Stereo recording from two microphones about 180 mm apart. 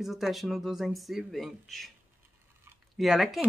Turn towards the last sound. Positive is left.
turn(degrees=0)  # may be behind; listen again after turning